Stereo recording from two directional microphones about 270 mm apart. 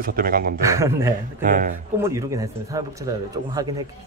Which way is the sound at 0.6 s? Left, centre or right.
Centre.